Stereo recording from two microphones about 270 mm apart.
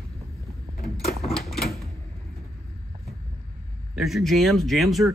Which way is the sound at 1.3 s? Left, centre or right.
Centre.